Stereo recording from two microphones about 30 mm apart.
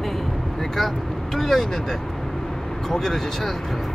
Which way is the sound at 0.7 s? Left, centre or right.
Centre.